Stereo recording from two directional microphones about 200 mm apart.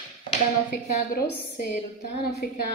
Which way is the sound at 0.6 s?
50° left (ahead or behind).